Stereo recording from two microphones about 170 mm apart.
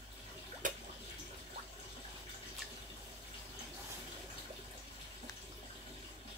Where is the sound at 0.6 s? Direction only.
50° right (ahead or behind).